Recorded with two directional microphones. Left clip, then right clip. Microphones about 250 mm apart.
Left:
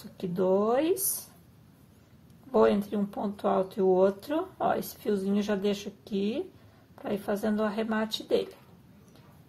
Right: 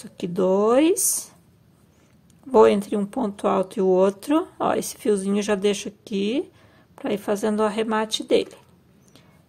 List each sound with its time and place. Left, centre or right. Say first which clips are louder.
0.2 s speech: right 6 dB; right
2.5 s speech: right 8 dB; right